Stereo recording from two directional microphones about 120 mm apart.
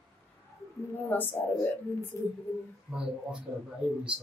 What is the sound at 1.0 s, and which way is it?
A woman's voice, 15° left (ahead or behind).